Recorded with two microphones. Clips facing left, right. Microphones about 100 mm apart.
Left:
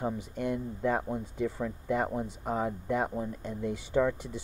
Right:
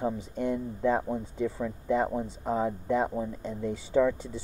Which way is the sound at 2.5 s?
25° right (ahead or behind).